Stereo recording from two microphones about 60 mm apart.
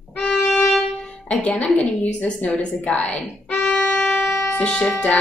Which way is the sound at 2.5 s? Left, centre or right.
Centre.